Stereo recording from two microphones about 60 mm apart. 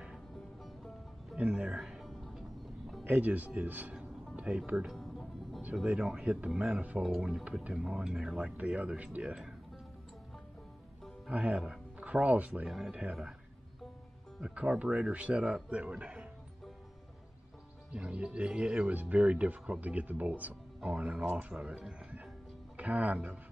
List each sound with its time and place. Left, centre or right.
1.3 s speech: centre
1.8 s music: centre
3.0 s speech: right
3.9 s music: centre
5.9 s speech: centre
7.0 s speech: centre
11.2 s speech: centre
12.6 s speech: centre
14.4 s speech: centre
17.9 s speech: centre
18.9 s speech: right